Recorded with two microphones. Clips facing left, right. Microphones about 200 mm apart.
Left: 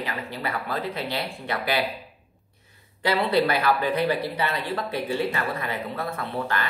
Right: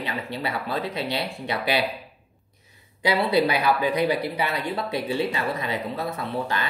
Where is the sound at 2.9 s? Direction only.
10° right (ahead or behind).